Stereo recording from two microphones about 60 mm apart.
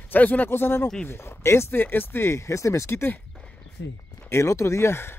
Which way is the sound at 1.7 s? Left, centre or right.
Left.